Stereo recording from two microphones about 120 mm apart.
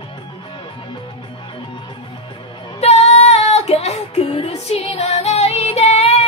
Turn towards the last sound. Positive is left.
turn(degrees=60)  # may be behind; listen again after turning